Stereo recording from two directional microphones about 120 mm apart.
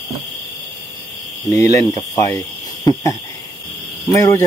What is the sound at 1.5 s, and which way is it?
Speech, 25° left (ahead or behind).